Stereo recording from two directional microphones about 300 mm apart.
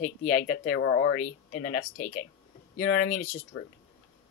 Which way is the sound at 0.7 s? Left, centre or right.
Left.